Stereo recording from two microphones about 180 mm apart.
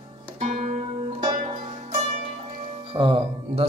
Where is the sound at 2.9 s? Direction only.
30° right (ahead or behind).